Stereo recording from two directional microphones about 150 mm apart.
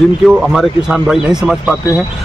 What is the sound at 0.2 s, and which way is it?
A man's voice, 5° right (ahead or behind).